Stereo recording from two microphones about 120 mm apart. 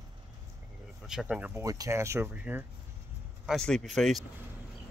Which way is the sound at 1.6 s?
25° right (ahead or behind).